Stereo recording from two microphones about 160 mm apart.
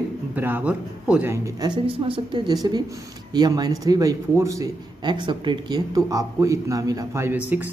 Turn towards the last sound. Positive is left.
turn(degrees=-15)  # may be behind; listen again after turning